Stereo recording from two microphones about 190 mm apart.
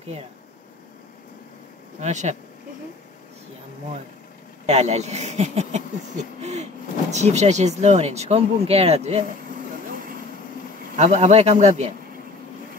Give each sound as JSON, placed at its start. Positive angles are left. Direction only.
{"t": 2.0, "sound": "speech", "side_deg": -40}
{"t": 4.6, "sound": "speech", "side_deg": -35}
{"t": 11.0, "sound": "speech", "side_deg": -35}